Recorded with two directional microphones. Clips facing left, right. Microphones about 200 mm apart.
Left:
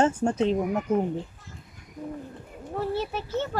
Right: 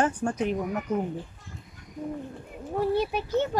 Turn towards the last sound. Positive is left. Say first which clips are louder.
# right 3 dB
turn(degrees=-15)  # may be behind; listen again after turning